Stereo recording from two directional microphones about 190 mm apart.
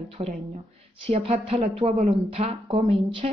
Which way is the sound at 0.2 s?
30° right (ahead or behind).